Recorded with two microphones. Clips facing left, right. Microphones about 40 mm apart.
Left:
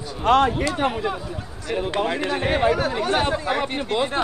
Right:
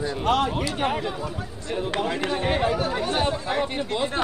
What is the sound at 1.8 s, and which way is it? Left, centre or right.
Speech, left.